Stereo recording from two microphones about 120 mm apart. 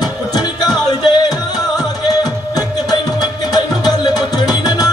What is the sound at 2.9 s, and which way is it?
Music, 35° left (ahead or behind).